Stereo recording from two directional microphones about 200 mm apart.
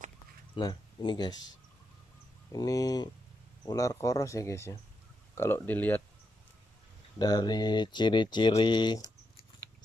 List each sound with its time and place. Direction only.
0.6 s speech: 20° left (ahead or behind)
7.2 s speech: 20° left (ahead or behind)